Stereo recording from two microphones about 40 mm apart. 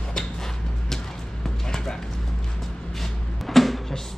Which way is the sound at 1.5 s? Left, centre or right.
Centre.